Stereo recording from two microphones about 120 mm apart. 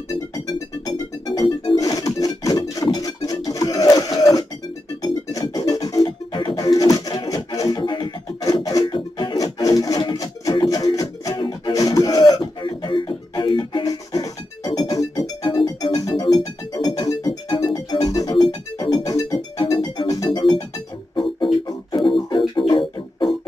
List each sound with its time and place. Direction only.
0.8 s music: 35° left (ahead or behind)
17.7 s music: 30° left (ahead or behind)